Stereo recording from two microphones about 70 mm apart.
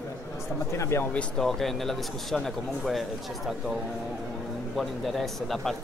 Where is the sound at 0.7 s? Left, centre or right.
Left.